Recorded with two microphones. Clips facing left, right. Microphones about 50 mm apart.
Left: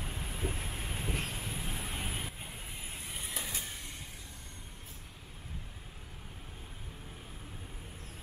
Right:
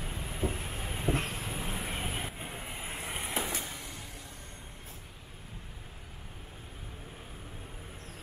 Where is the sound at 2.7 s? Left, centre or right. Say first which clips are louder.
Right 7 dB; right.